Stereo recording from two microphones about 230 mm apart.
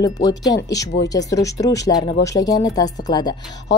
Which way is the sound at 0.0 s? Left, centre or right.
Centre.